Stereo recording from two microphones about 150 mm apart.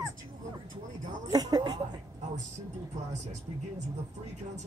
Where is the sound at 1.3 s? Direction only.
25° right (ahead or behind).